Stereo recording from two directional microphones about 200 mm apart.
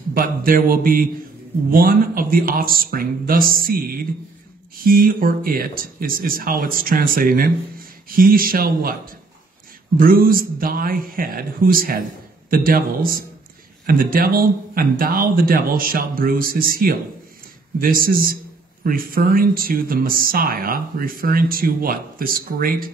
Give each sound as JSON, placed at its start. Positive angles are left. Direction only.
{"t": 0.1, "sound": "speech", "side_deg": -45}